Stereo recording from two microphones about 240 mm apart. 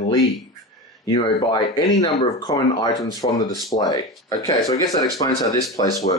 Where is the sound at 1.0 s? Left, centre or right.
Left.